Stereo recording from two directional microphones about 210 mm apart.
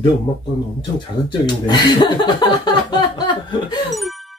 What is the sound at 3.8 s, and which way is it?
Music, centre (ahead or behind).